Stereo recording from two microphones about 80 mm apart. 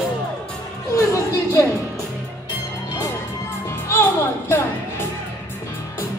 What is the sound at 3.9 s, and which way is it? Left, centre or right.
Music, left.